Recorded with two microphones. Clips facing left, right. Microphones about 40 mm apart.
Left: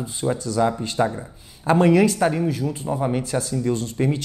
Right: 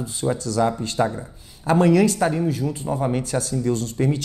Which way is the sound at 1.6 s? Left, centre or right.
Left.